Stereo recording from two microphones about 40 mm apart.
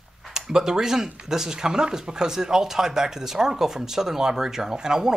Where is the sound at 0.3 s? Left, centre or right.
Centre.